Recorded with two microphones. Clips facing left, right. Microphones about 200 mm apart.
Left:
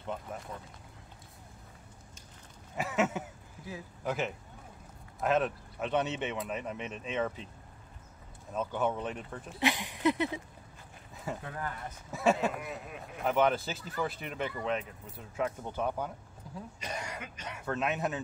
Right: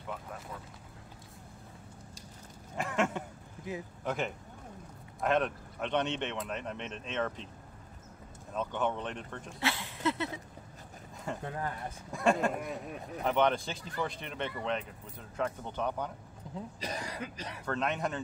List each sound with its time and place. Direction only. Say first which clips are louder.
0.0 s vehicle: left 3 dB; 25° left (ahead or behind)
2.8 s a sound: left 1 dB; 5° left (ahead or behind)
4.0 s speech: left 2 dB; 5° left (ahead or behind)
8.5 s speech: left 1 dB; 5° left (ahead or behind)
9.6 s speech: left 4 dB; 15° left (ahead or behind)
11.4 s speech: right 2 dB; 25° right (ahead or behind)
12.1 s speech: even; 5° left (ahead or behind)
16.8 s speech: right 1 dB; 35° right (ahead or behind)
17.6 s speech: left 1 dB; 5° left (ahead or behind)